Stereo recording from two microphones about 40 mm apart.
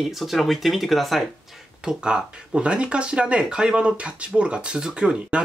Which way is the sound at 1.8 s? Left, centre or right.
Centre.